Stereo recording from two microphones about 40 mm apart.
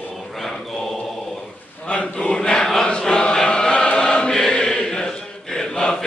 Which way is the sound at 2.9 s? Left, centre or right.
Left.